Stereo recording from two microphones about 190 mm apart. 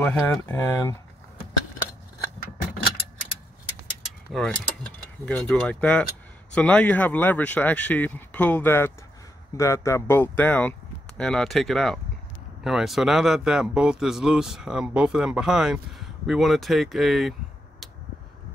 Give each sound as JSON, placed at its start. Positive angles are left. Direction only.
{"t": 0.0, "sound": "speech", "side_deg": 10}
{"t": 4.3, "sound": "speech", "side_deg": 0}